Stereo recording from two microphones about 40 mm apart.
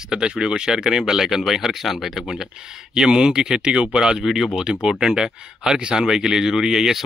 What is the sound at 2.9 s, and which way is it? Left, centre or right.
Speech, centre.